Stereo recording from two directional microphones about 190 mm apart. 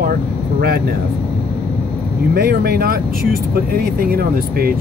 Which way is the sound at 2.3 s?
55° right (ahead or behind).